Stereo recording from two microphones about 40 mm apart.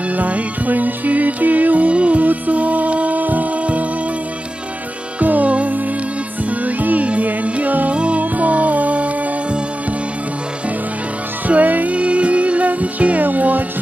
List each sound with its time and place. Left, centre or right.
0.1 s music: right
5.2 s music: right
8.2 s music: right
11.4 s music: right
11.9 s music: right